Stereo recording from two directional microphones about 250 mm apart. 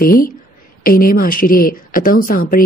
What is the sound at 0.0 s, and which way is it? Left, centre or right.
Speech, left.